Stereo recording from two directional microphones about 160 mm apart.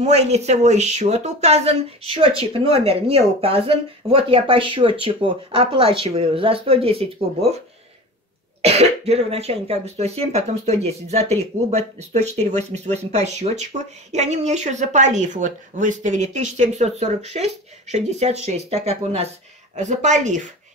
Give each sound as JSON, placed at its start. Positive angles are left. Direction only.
{"t": 0.0, "sound": "speech", "side_deg": -45}
{"t": 8.6, "sound": "speech", "side_deg": -40}